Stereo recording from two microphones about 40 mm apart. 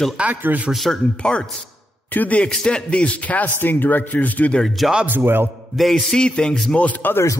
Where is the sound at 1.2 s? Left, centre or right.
Left.